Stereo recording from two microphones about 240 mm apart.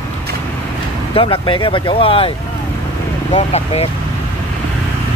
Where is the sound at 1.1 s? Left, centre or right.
Left.